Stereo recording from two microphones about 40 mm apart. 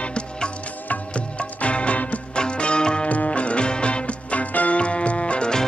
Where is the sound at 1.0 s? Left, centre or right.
Left.